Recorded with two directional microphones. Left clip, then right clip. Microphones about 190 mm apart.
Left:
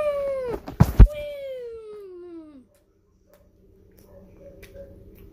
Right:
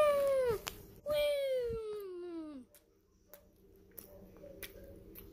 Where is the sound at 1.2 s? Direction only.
35° right (ahead or behind).